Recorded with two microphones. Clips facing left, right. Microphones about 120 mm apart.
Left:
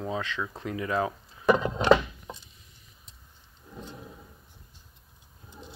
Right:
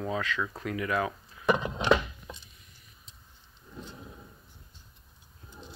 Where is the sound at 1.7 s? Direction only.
40° left (ahead or behind).